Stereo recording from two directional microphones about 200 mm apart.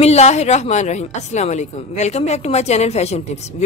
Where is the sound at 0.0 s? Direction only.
35° left (ahead or behind).